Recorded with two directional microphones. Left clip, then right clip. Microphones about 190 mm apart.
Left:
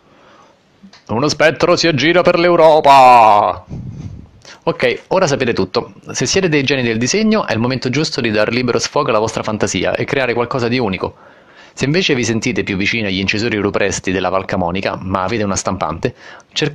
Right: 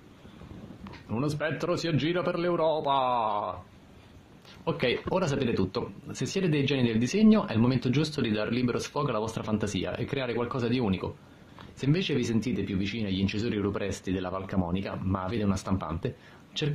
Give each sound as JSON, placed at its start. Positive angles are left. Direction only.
{"t": 1.0, "sound": "speech", "side_deg": 40}
{"t": 4.6, "sound": "speech", "side_deg": 35}